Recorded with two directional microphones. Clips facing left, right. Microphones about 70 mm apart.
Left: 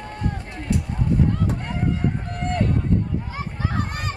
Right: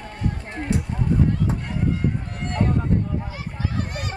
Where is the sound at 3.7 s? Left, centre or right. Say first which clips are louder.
Left 3 dB; left.